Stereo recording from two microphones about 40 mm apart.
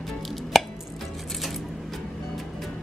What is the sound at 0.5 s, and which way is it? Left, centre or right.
Chopping, centre.